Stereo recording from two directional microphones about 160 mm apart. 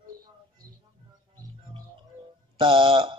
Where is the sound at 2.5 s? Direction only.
30° right (ahead or behind).